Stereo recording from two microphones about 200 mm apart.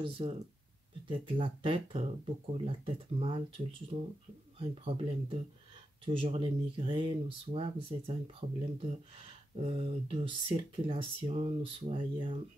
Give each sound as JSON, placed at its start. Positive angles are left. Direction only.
{"t": 0.0, "sound": "speech", "side_deg": -30}